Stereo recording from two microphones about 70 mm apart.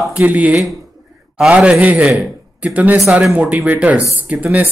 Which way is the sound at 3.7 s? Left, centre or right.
Right.